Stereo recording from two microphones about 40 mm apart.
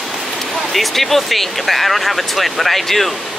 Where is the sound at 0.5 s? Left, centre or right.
Centre.